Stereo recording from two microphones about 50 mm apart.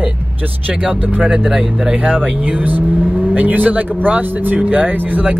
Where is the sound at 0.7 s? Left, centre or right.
Right.